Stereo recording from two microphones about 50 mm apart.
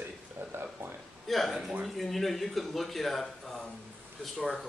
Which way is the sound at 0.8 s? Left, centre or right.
Right.